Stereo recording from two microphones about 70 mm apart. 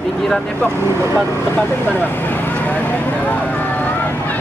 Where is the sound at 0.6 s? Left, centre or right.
Right.